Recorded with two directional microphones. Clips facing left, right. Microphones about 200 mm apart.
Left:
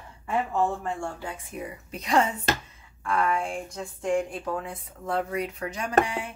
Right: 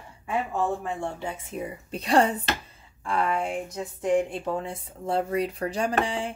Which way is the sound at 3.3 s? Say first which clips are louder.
Right 1 dB; 5° right (ahead or behind).